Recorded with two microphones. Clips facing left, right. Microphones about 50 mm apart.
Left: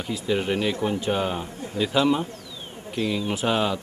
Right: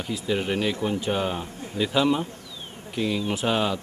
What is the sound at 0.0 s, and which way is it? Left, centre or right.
Speech, centre.